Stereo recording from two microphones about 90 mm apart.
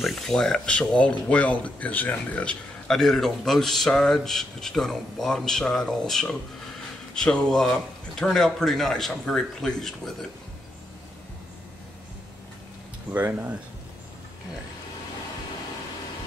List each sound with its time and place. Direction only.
0.0 s speech: 5° left (ahead or behind)
2.9 s speech: 5° left (ahead or behind)
13.1 s speech: 20° right (ahead or behind)